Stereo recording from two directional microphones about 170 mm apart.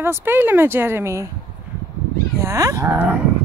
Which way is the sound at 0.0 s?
15° right (ahead or behind).